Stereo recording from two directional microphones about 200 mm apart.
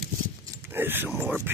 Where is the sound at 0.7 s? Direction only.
10° right (ahead or behind).